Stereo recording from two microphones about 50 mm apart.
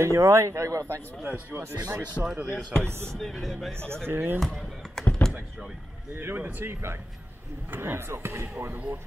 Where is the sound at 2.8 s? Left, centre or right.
Right.